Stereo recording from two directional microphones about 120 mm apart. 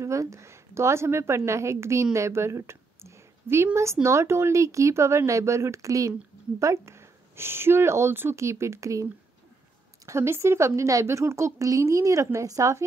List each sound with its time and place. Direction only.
0.0 s a woman's voice: 25° right (ahead or behind)